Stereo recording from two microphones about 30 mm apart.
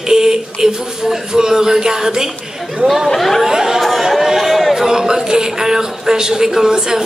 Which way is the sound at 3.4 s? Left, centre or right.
Centre.